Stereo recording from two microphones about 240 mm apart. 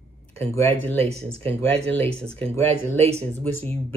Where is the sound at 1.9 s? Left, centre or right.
Centre.